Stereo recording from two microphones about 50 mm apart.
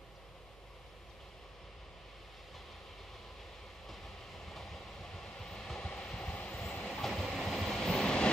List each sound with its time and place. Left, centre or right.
3.8 s vehicle: centre
5.9 s a sound: centre
6.2 s vehicle: left
6.5 s train: centre